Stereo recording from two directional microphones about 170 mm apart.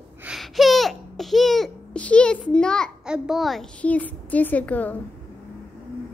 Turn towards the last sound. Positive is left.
turn(degrees=10)  # may be behind; listen again after turning